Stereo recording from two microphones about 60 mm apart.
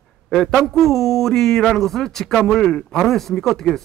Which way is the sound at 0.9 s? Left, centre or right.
Centre.